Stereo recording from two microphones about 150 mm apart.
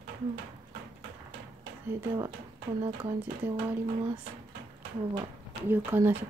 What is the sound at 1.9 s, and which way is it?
Speech, 15° right (ahead or behind).